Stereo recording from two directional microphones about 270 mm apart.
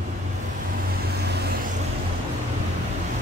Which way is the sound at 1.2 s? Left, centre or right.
Right.